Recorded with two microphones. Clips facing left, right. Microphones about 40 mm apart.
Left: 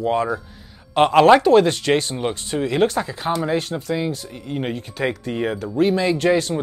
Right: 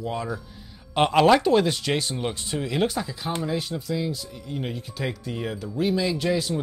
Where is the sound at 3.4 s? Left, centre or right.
Left.